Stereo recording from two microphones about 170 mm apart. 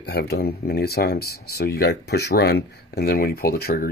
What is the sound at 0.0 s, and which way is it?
Speech, 70° left (ahead or behind).